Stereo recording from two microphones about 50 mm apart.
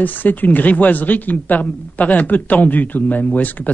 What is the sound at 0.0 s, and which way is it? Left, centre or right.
Speech, left.